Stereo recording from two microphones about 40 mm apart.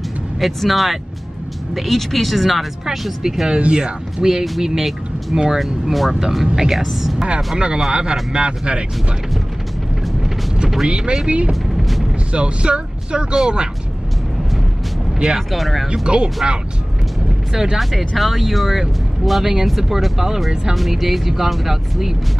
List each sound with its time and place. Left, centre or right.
0.4 s speech: centre
3.2 s speech: centre
5.6 s speech: centre
6.7 s speech: centre
7.5 s speech: centre
10.9 s speech: right
11.7 s music: centre
12.3 s speech: right
15.3 s speech: centre
16.4 s speech: centre
17.7 s speech: centre